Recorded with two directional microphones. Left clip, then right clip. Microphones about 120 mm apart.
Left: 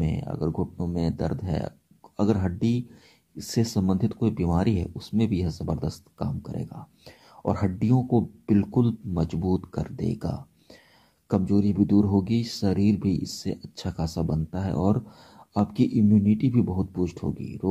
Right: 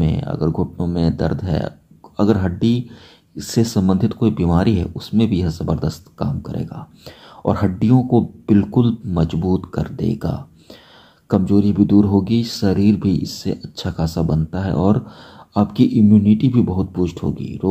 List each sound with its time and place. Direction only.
0.0 s speech: 25° left (ahead or behind)